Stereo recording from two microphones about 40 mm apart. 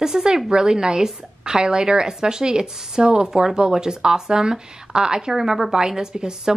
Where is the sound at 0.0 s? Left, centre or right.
Centre.